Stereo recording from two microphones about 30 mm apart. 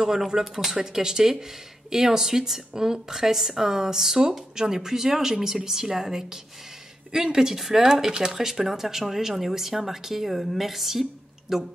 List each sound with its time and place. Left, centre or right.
0.0 s a woman's voice: centre
0.7 s a woman's voice: centre
7.3 s a woman's voice: centre
8.3 s a woman's voice: centre